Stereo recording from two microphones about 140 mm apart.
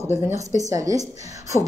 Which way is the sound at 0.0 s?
20° right (ahead or behind).